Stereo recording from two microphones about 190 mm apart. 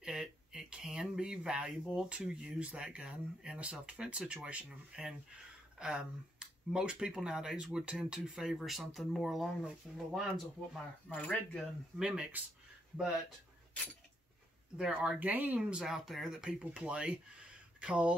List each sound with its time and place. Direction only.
0.0 s speech: 5° right (ahead or behind)
14.8 s speech: centre (ahead or behind)